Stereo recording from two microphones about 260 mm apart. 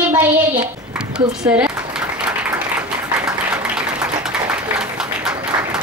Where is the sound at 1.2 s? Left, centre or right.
Centre.